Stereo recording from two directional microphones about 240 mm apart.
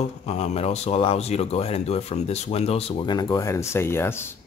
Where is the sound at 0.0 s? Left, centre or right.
Left; by 4.3 s centre.